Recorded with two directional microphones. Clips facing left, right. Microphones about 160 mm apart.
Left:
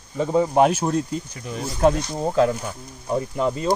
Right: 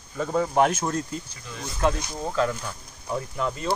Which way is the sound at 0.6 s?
35° left (ahead or behind).